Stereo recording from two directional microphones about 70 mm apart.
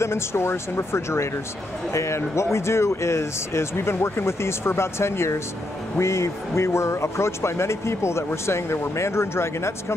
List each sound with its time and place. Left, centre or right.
0.0 s speech: left